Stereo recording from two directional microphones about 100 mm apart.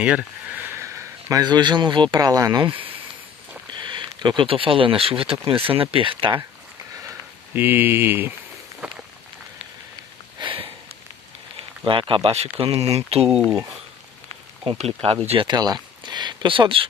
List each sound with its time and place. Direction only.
0.7 s a sound: 30° right (ahead or behind)
1.4 s speech: 50° right (ahead or behind)
2.1 s speech: 35° right (ahead or behind)
2.6 s speech: 60° right (ahead or behind)
7.1 s speech: 20° right (ahead or behind)
8.8 s walk: 10° right (ahead or behind)
10.4 s sniff: 60° right (ahead or behind)
11.8 s speech: 60° right (ahead or behind); by 13.3 s 90° right
14.6 s speech: 75° right (ahead or behind)
15.4 s speech: 40° right (ahead or behind); by 16.8 s 60° right (ahead or behind)